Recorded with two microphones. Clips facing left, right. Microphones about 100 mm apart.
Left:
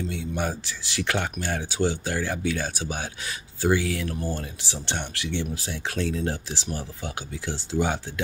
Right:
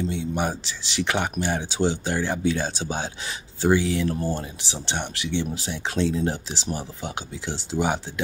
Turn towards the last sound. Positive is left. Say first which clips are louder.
# right 1 dB
turn(degrees=-15)  # may be behind; listen again after turning